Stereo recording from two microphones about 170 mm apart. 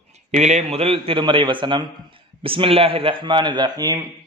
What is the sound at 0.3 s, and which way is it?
A man's voice, 45° right (ahead or behind).